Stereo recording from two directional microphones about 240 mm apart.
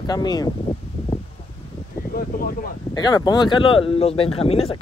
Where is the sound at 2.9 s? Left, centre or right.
Centre.